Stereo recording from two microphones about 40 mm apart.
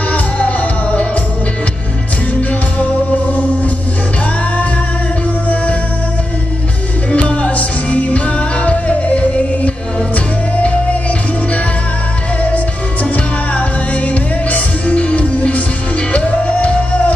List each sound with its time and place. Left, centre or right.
0.1 s music: left
7.1 s music: left
13.1 s music: left